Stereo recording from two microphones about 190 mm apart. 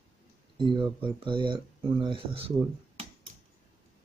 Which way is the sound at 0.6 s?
25° right (ahead or behind).